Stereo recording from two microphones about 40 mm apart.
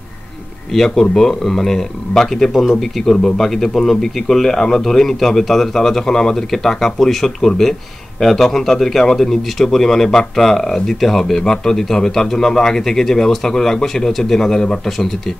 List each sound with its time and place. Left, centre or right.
0.7 s a man's voice: centre